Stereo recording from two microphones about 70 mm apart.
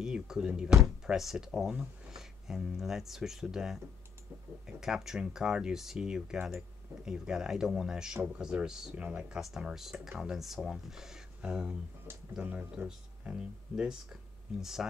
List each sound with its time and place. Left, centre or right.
0.0 s speech: centre
8.9 s speech: centre
9.4 s speech: centre